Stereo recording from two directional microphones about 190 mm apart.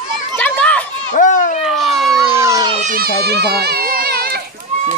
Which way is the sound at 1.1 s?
40° left (ahead or behind).